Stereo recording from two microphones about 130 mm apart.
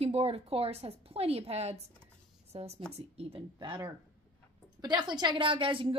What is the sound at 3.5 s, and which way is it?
A woman's voice, 40° right (ahead or behind).